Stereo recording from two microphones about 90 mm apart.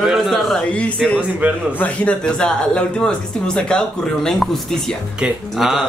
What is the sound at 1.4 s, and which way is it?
Speech, 20° right (ahead or behind).